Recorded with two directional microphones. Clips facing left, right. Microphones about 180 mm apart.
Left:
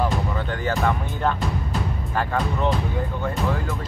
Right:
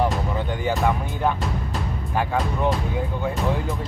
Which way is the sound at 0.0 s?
15° right (ahead or behind).